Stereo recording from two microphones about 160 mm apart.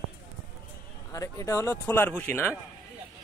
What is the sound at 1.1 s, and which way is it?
Speech, 20° left (ahead or behind).